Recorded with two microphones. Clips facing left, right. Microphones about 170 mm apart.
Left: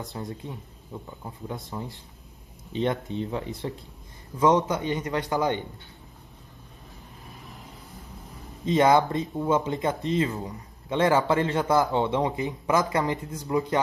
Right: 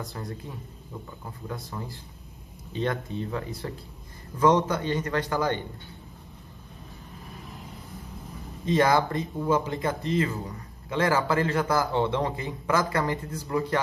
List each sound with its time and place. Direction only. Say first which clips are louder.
0.1 s speech: left 2 dB; 20° left (ahead or behind)
1.5 s speech: left 1 dB; 20° left (ahead or behind)
8.6 s speech: left 2 dB; 20° left (ahead or behind)